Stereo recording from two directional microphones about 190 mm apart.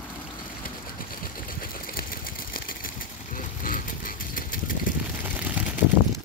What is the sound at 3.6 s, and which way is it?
Vehicle, 45° left (ahead or behind).